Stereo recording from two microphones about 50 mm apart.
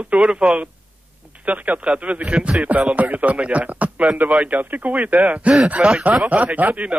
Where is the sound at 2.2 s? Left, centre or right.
Centre.